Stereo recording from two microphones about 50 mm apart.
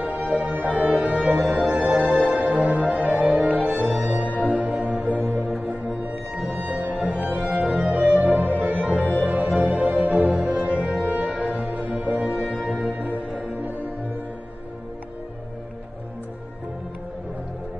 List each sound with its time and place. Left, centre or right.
0.0 s music: right
8.9 s music: left
9.2 s music: right